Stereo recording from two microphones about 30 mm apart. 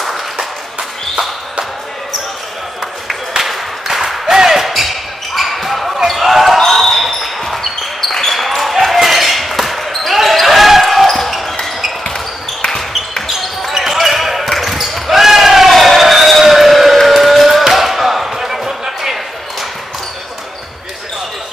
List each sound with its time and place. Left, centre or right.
3.1 s a sound: centre
4.4 s basketball bounce: centre
6.6 s basketball bounce: centre
8.4 s basketball bounce: centre
13.4 s basketball bounce: centre
15.7 s a sound: centre
18.4 s basketball bounce: centre